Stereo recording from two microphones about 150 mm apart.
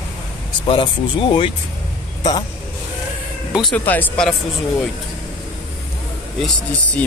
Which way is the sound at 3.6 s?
10° left (ahead or behind).